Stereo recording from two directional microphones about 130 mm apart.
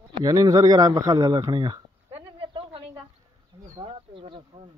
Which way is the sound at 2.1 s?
45° right (ahead or behind).